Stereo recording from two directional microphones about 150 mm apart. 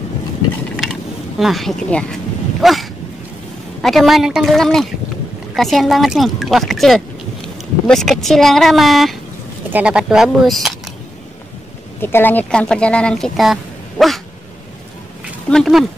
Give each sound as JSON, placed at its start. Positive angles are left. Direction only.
{"t": 1.4, "sound": "speech", "side_deg": 0}
{"t": 2.6, "sound": "dog", "side_deg": 0}
{"t": 3.8, "sound": "speech", "side_deg": 0}
{"t": 12.0, "sound": "speech", "side_deg": 15}
{"t": 15.5, "sound": "speech", "side_deg": 0}